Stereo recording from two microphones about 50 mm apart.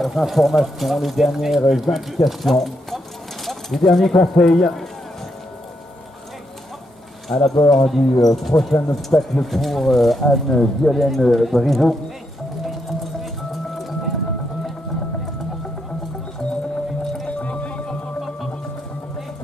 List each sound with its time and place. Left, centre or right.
0.0 s speech: centre
7.2 s speech: centre
13.2 s music: centre
17.0 s music: centre
17.4 s music: left